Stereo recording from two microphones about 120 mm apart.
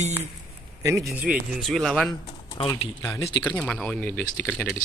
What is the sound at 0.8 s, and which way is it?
Speech, 25° right (ahead or behind).